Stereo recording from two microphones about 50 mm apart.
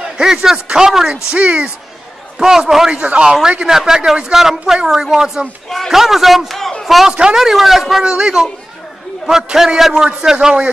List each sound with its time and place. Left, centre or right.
0.2 s speech: centre
2.3 s a man's voice: centre
6.8 s a sound: centre
7.1 s speech: centre